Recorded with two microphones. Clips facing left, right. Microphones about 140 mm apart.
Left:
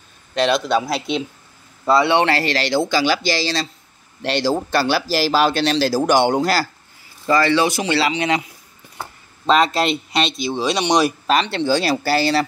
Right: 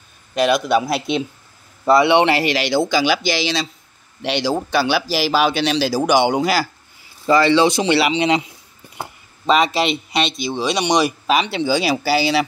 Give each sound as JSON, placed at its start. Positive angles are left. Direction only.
{"t": 0.3, "sound": "speech", "side_deg": -10}
{"t": 3.0, "sound": "speech", "side_deg": -5}
{"t": 7.2, "sound": "speech", "side_deg": -15}
{"t": 9.5, "sound": "speech", "side_deg": -5}